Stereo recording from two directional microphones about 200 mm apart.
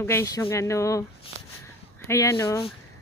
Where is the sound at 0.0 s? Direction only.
15° left (ahead or behind).